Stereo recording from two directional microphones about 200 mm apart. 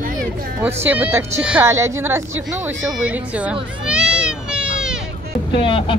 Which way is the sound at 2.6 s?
5° right (ahead or behind).